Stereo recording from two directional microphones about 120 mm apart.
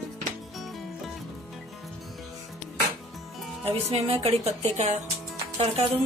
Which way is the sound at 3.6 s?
55° right (ahead or behind).